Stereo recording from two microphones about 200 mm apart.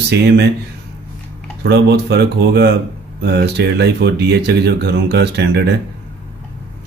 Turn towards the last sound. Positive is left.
turn(degrees=-55)  # may be behind; listen again after turning